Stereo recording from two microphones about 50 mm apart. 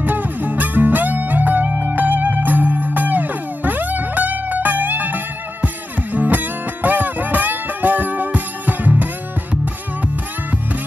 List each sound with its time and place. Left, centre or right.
0.0 s music: right